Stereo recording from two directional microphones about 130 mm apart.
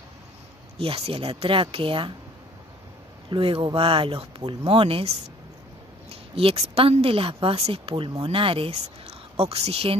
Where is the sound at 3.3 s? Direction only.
40° right (ahead or behind).